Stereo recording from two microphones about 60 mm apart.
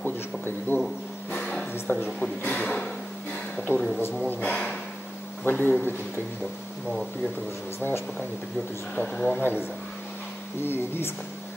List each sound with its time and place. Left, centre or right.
0.7 s speech: left
1.3 s a sound: centre
1.7 s a sound: left
2.0 s speech: left
3.7 s a man's voice: left
7.8 s a man's voice: left
8.9 s speech: centre
9.4 s a man's voice: left